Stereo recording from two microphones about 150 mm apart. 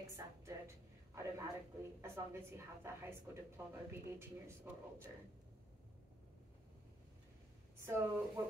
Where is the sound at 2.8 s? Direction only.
20° right (ahead or behind).